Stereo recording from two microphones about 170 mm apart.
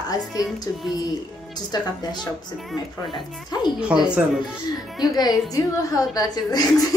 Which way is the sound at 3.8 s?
5° right (ahead or behind).